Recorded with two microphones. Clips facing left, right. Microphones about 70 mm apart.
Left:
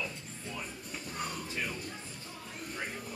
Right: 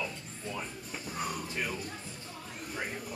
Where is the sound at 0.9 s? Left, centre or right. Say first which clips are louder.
Right 3 dB; centre.